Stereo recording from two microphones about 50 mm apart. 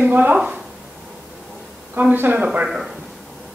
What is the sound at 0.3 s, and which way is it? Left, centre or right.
Speech, right.